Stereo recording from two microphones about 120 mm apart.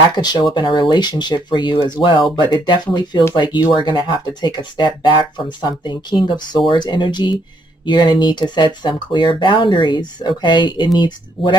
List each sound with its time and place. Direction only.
0.1 s speech: 35° left (ahead or behind)